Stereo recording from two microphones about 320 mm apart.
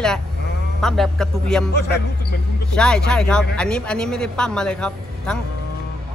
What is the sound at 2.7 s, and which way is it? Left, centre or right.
Speech, centre.